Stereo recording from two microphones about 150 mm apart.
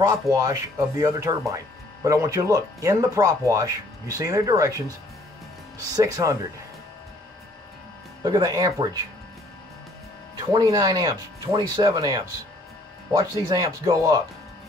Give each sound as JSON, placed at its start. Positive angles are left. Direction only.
{"t": 0.1, "sound": "speech", "side_deg": -20}
{"t": 5.9, "sound": "speech", "side_deg": -25}
{"t": 8.2, "sound": "speech", "side_deg": -25}
{"t": 10.5, "sound": "speech", "side_deg": -25}